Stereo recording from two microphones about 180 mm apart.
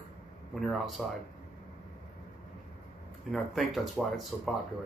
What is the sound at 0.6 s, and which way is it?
Speech, centre (ahead or behind).